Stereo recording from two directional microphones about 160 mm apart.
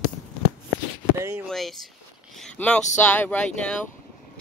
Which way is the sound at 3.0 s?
10° left (ahead or behind).